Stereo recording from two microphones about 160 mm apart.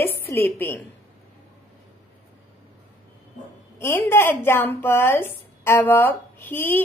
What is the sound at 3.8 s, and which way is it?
A woman's voice, 15° left (ahead or behind).